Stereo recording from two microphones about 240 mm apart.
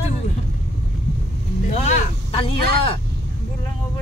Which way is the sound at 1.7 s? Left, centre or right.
Left.